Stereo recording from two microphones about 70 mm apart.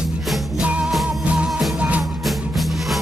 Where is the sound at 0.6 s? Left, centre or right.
Centre.